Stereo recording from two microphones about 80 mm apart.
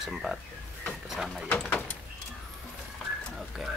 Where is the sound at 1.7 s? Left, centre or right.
Centre.